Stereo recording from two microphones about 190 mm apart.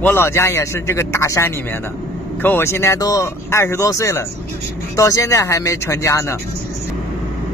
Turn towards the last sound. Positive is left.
turn(degrees=15)  # may be behind; listen again after turning